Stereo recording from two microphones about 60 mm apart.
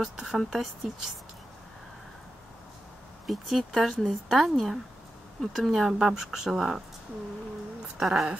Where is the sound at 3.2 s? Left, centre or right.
Centre.